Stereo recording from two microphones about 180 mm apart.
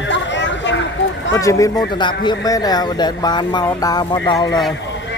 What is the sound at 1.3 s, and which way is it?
A man's voice, 20° left (ahead or behind).